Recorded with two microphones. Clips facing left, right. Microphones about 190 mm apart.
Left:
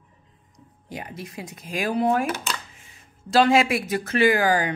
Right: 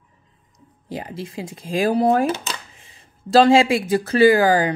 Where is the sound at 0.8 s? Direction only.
30° right (ahead or behind).